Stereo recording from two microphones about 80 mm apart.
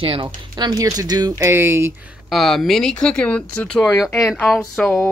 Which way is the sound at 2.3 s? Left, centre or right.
Centre.